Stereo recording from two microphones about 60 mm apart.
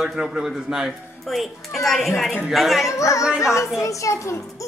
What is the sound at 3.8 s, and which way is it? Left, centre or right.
Speech, left.